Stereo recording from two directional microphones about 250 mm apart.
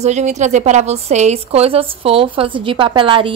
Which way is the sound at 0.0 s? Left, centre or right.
Right.